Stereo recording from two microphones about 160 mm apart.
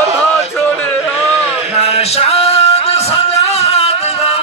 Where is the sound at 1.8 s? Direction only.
40° left (ahead or behind).